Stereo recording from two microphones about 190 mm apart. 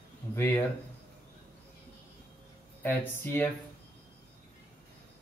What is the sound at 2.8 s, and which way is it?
Speech, 10° left (ahead or behind).